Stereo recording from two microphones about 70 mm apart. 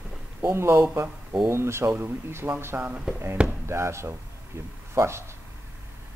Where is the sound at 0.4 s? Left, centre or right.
Right.